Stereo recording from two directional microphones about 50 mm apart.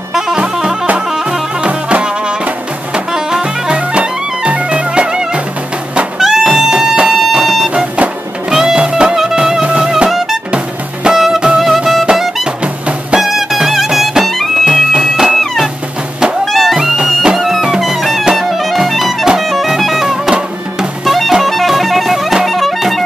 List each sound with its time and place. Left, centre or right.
0.1 s music: centre
7.1 s music: centre
7.7 s music: right; by 12.1 s centre
13.2 s music: centre
14.6 s bagpipes: centre
15.0 s music: centre
15.3 s music: centre
17.4 s music: centre